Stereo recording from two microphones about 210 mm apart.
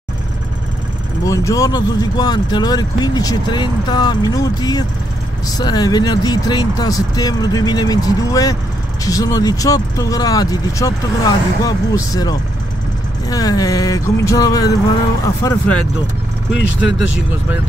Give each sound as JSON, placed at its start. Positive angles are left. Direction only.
{"t": 1.2, "sound": "speech", "side_deg": 15}